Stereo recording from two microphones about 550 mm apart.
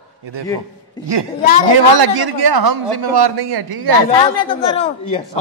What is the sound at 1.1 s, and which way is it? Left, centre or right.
A man's voice, right.